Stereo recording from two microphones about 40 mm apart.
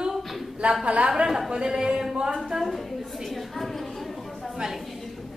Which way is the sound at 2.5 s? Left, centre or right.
Centre.